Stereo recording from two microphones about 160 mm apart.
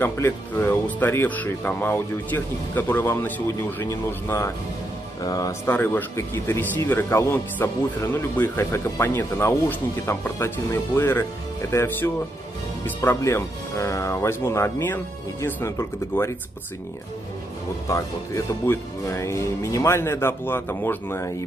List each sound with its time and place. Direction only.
0.0 s speech: 15° left (ahead or behind)
17.8 s speech: 20° left (ahead or behind)